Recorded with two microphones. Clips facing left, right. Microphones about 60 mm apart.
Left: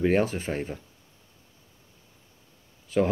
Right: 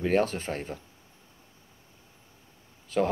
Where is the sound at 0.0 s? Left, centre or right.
Centre.